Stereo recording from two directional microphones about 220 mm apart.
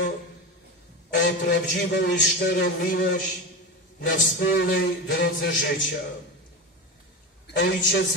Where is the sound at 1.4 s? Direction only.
50° left (ahead or behind).